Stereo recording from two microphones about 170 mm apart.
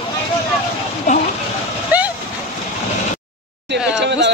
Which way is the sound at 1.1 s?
45° left (ahead or behind).